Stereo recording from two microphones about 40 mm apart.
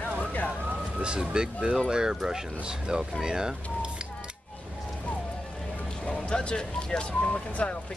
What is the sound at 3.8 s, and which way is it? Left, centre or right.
Music, right.